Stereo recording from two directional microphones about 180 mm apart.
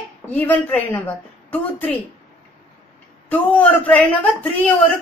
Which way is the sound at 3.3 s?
10° left (ahead or behind).